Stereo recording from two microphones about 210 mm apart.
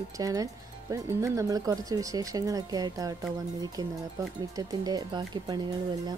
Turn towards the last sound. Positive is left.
turn(degrees=-20)  # may be behind; listen again after turning